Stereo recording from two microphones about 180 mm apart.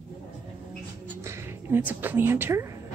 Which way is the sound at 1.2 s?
15° right (ahead or behind).